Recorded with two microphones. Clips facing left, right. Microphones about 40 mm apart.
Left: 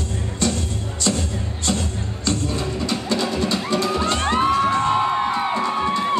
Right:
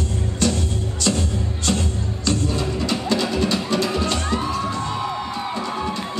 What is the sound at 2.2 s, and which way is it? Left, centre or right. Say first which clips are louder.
Music: right 1 dB; left.